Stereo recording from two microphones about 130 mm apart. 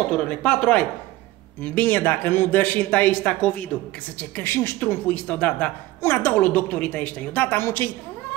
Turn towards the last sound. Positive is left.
turn(degrees=15)  # may be behind; listen again after turning